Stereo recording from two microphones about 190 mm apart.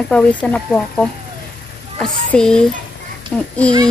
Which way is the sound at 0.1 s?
5° left (ahead or behind).